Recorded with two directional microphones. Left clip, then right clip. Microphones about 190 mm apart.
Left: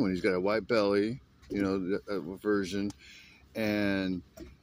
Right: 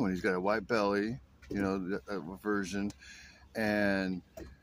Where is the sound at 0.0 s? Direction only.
10° right (ahead or behind).